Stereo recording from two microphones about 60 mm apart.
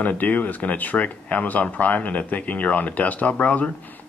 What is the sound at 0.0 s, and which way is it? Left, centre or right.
Speech, left.